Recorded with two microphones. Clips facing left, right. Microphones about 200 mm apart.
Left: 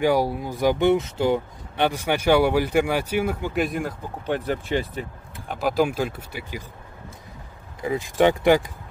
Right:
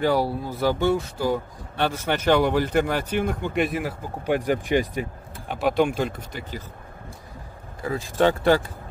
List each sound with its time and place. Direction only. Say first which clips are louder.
0.0 s speech: left 1 dB; 15° left (ahead or behind); by 5.0 s 15° right (ahead or behind)
5.5 s speech: right 1 dB; centre (ahead or behind)
7.8 s speech: left 2 dB; 15° left (ahead or behind)